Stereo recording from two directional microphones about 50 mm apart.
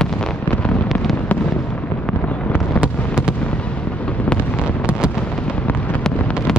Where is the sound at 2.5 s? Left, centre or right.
Centre.